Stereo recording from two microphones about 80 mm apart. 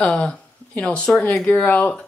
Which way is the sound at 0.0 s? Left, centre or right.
Centre.